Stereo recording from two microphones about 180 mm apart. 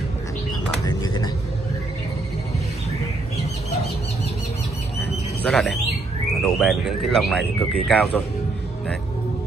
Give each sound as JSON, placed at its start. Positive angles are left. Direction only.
{"t": 0.8, "sound": "a sound", "side_deg": 20}
{"t": 5.4, "sound": "music", "side_deg": 5}
{"t": 6.4, "sound": "speech", "side_deg": 0}